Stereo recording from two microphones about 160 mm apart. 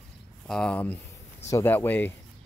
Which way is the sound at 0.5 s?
5° left (ahead or behind).